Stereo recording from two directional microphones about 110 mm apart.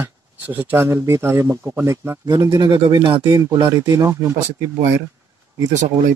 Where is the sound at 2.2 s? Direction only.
35° right (ahead or behind).